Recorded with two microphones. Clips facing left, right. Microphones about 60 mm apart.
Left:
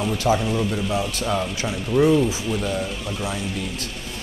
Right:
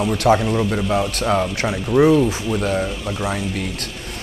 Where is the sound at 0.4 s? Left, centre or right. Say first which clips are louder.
Right 3 dB; centre.